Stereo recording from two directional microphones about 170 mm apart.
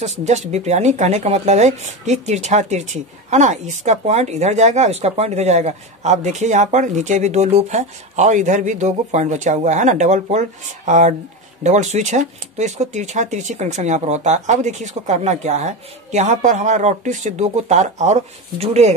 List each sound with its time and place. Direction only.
0.0 s speech: 40° right (ahead or behind)